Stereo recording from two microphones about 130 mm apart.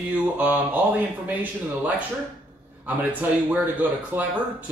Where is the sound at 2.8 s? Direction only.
15° right (ahead or behind).